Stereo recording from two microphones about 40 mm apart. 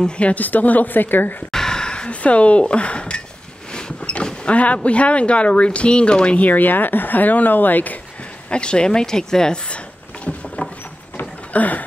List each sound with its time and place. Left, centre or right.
0.2 s speech: left
1.5 s a sound: centre; by 2.6 s left
2.6 s speech: left
3.7 s a sound: left
4.8 s speech: left
6.3 s speech: left
8.5 s speech: left
10.2 s boat: left
11.1 s a sound: left